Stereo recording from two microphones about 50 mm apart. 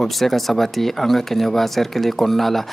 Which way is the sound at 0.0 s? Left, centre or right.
Centre.